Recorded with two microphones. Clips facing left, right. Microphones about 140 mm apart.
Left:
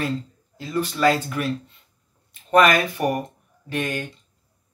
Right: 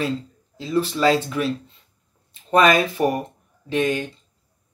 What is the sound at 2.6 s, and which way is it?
Speech, 25° right (ahead or behind).